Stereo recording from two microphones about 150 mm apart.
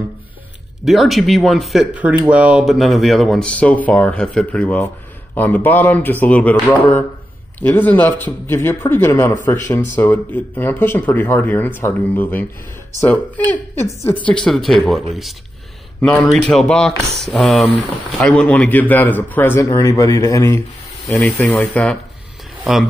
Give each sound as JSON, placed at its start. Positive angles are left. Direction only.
{"t": 0.8, "sound": "speech", "side_deg": 0}
{"t": 7.6, "sound": "speech", "side_deg": 10}
{"t": 13.7, "sound": "speech", "side_deg": 10}
{"t": 16.3, "sound": "speech", "side_deg": 5}